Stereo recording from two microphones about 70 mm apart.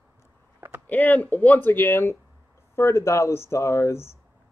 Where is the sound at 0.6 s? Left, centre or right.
Right.